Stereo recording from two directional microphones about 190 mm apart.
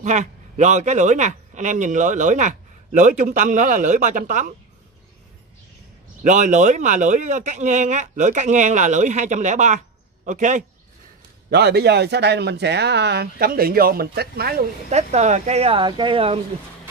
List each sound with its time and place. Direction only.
0.0 s speech: 40° right (ahead or behind)
6.2 s speech: 40° right (ahead or behind)
11.5 s speech: 60° right (ahead or behind)
14.9 s speech: 35° right (ahead or behind)